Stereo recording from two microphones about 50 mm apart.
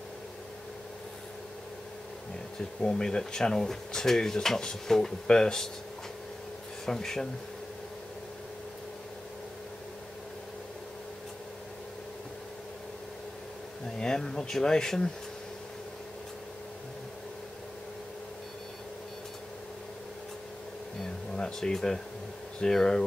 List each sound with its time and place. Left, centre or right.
2.8 s speech: centre
6.9 s speech: centre
13.9 s speech: centre
21.0 s a sound: centre
22.6 s speech: centre